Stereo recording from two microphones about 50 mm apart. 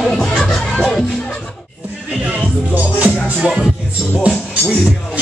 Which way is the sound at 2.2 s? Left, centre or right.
Right.